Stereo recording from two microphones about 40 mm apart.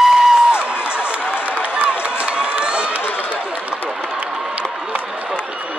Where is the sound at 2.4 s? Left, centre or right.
Right.